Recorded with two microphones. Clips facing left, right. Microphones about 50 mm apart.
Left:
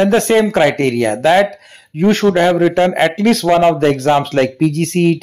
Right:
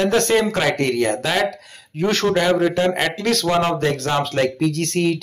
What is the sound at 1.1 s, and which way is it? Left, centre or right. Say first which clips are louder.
Speech: left 9 dB; left.